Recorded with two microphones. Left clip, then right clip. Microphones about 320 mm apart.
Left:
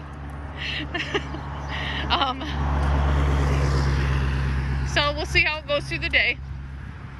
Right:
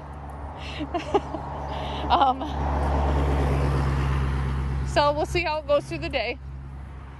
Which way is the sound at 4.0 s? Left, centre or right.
Centre.